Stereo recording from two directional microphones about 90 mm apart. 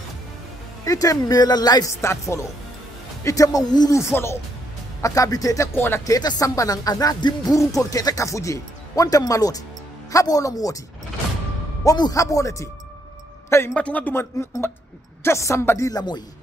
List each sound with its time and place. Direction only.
0.8 s speech: 40° left (ahead or behind)
3.9 s speech: 30° left (ahead or behind); by 7.5 s 50° left (ahead or behind)
7.5 s speech: 40° left (ahead or behind)
11.8 s speech: 40° left (ahead or behind)
13.7 s speech: 15° left (ahead or behind)
15.9 s speech: 50° left (ahead or behind)